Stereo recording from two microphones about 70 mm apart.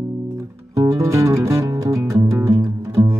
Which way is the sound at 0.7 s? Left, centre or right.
Right.